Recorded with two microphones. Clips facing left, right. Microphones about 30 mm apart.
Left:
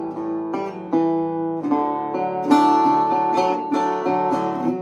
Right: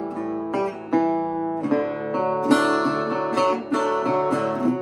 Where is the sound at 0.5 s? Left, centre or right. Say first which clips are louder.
Even; right.